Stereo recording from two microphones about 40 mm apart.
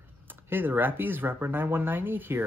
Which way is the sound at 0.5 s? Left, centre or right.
Right.